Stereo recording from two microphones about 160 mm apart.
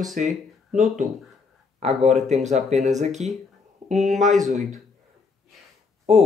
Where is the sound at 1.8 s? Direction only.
45° right (ahead or behind).